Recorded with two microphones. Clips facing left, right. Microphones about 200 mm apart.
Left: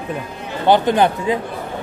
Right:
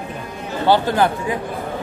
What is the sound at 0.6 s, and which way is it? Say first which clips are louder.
Speech: left 2 dB; 20° left (ahead or behind).